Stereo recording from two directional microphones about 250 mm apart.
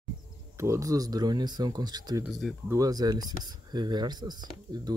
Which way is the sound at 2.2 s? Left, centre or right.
Centre.